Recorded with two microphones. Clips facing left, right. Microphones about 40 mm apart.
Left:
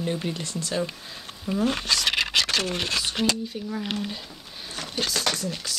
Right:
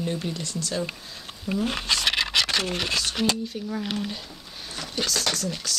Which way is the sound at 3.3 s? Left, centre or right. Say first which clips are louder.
Even; centre.